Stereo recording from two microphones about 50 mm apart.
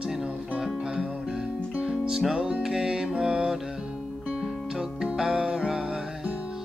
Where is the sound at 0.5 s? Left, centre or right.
Centre.